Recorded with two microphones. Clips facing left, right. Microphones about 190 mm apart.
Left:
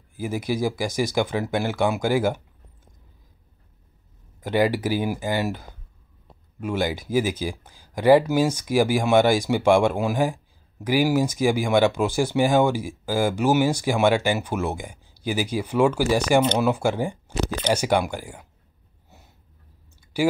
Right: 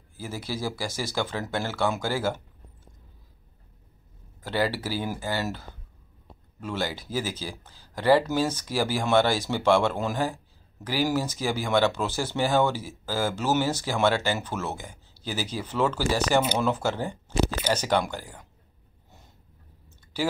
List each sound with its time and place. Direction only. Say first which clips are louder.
0.1 s speech: left 8 dB; 15° left (ahead or behind)
4.4 s speech: left 6 dB; 15° left (ahead or behind)
20.1 s speech: left 6 dB; 10° left (ahead or behind)